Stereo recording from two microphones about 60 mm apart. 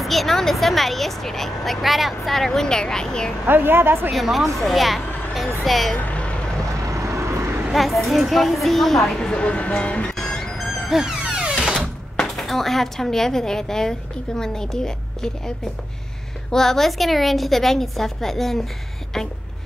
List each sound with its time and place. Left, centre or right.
0.0 s speech: centre
3.4 s a woman's voice: right
4.1 s speech: centre
5.9 s vehicle: left
6.7 s vehicle: right
7.7 s speech: centre; by 10.1 s left
10.1 s music: centre
10.9 s music: centre
11.7 s speech: centre
16.5 s speech: centre